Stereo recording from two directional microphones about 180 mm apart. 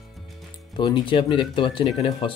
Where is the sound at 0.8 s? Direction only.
25° left (ahead or behind).